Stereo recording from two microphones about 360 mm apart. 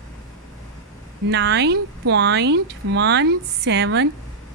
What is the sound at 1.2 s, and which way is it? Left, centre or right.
Speech, right.